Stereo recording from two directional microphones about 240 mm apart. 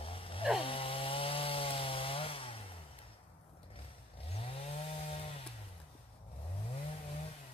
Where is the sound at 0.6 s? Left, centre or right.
Left.